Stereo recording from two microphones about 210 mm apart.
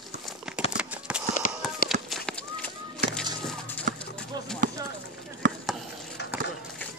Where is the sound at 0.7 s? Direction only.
5° right (ahead or behind).